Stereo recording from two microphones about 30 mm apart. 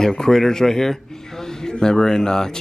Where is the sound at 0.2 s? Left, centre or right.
Centre.